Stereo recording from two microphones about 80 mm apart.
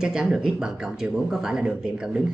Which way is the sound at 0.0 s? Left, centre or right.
Centre.